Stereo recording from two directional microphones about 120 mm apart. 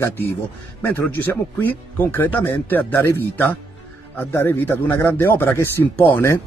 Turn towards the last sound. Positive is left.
turn(degrees=20)  # may be behind; listen again after turning